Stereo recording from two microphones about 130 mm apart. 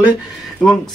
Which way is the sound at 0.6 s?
5° left (ahead or behind).